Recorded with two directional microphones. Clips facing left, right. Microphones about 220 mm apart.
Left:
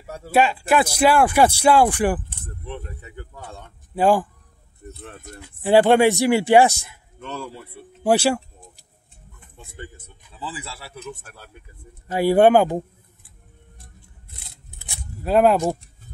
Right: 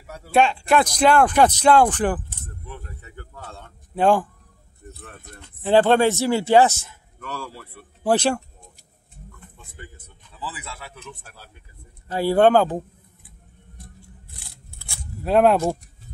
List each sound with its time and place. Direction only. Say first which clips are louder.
0.0 s speech: left 4 dB; 30° left (ahead or behind)
0.3 s speech: even; 5° left (ahead or behind)
2.4 s speech: left 5 dB; 20° left (ahead or behind); by 4.3 s 5° left (ahead or behind)
5.4 s speech: left 2 dB; 10° left (ahead or behind)
9.8 s speech: left 5 dB; 25° left (ahead or behind); by 11.5 s 50° left (ahead or behind)
12.1 s speech: left 2 dB; 15° left (ahead or behind)
14.3 s scissors: right 1 dB; 20° left (ahead or behind)
15.2 s speech: even; centre (ahead or behind)